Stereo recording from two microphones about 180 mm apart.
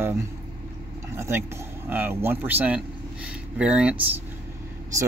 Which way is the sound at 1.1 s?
15° right (ahead or behind).